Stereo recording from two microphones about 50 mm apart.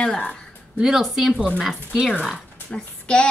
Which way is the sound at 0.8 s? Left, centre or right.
Centre.